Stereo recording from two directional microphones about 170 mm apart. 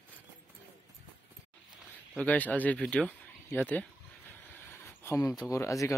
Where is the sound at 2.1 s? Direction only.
10° left (ahead or behind).